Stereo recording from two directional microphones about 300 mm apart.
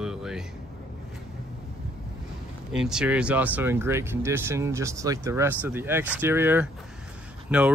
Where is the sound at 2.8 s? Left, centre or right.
Centre.